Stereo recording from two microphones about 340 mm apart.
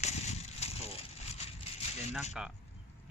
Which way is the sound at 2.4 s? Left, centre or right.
Centre.